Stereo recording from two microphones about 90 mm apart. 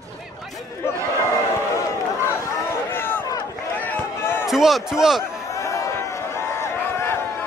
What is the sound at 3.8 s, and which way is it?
Run, 20° left (ahead or behind).